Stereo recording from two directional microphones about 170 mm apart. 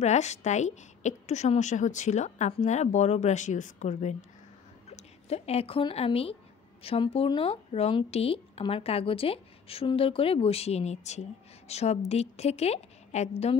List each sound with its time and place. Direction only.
0.0 s a woman's voice: 40° left (ahead or behind)